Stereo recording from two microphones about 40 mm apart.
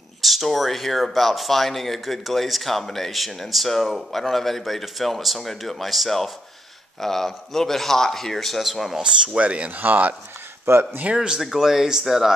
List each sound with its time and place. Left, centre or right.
0.2 s a man's voice: centre
8.6 s speech: centre
9.0 s speech: right
9.8 s speech: right
10.7 s speech: right
11.1 s speech: centre